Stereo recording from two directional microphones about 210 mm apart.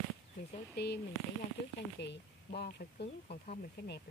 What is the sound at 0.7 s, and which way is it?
Speech, 50° left (ahead or behind).